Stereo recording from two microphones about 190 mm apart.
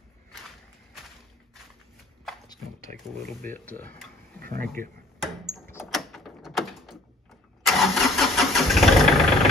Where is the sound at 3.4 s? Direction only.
10° left (ahead or behind).